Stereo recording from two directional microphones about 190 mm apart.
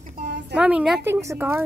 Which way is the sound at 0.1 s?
60° right (ahead or behind).